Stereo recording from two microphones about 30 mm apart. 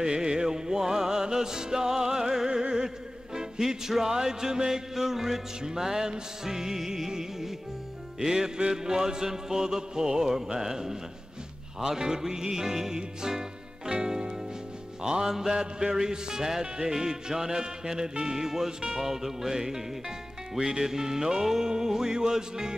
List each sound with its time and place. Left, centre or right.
0.0 s music: right
2.6 s a sound: right
3.3 s music: centre